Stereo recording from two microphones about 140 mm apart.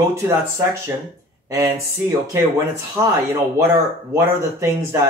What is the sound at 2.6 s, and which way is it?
Speech, 20° right (ahead or behind).